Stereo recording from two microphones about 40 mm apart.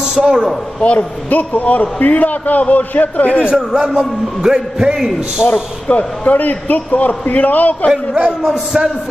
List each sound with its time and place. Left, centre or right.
0.0 s a man's voice: right
0.7 s a man's voice: left
1.3 s a man's voice: left
3.5 s a man's voice: centre
5.5 s a man's voice: left
7.9 s a man's voice: right